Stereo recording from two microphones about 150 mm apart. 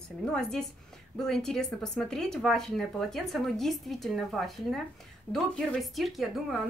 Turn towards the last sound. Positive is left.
turn(degrees=0)  # may be behind; listen again after turning